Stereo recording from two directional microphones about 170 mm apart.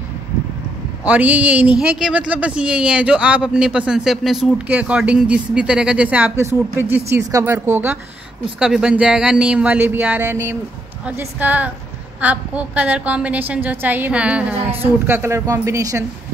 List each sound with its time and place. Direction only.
1.0 s speech: 10° right (ahead or behind)